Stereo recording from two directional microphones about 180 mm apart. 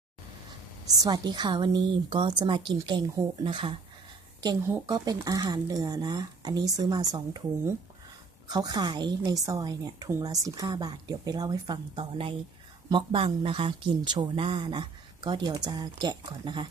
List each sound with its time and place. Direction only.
0.9 s a woman's voice: 20° right (ahead or behind)